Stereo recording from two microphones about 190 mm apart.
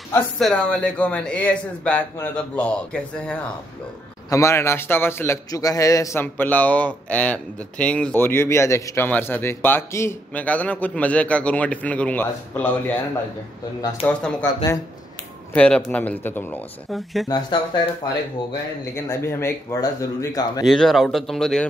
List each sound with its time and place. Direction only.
0.4 s a man's voice: 5° left (ahead or behind)
14.0 s a man's voice: 10° left (ahead or behind)
16.9 s speech: centre (ahead or behind)
17.3 s speech: 20° left (ahead or behind)
18.9 s a man's voice: 15° left (ahead or behind)
20.6 s speech: centre (ahead or behind)